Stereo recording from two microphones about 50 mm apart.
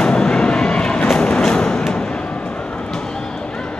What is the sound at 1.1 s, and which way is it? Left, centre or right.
Music, centre.